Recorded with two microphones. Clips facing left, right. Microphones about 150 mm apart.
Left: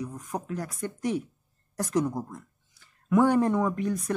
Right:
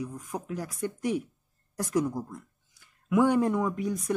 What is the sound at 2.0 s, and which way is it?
Speech, 20° left (ahead or behind).